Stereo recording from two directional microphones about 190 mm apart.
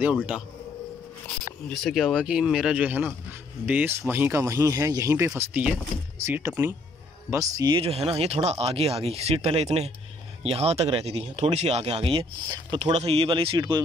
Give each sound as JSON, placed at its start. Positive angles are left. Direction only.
{"t": 0.0, "sound": "speech", "side_deg": -10}
{"t": 1.7, "sound": "speech", "side_deg": 0}